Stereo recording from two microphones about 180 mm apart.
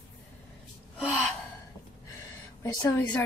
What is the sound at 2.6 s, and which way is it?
Speech, 15° left (ahead or behind).